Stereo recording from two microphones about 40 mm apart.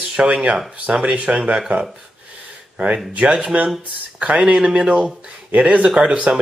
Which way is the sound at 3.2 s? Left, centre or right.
Right.